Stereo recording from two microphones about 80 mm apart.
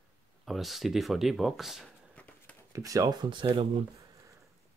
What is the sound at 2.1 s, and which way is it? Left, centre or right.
Run, centre.